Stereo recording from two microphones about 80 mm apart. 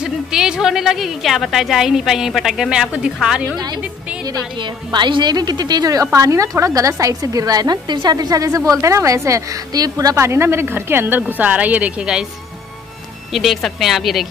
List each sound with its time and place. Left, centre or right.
0.0 s a woman's voice: centre
4.6 s a woman's voice: right
6.1 s a woman's voice: right
10.1 s speech: right; by 12.3 s centre
13.3 s a woman's voice: centre